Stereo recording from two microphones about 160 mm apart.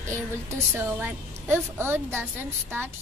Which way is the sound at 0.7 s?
15° right (ahead or behind).